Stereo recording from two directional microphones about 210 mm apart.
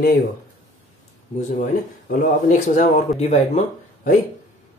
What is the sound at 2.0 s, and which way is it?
Speech, 40° left (ahead or behind).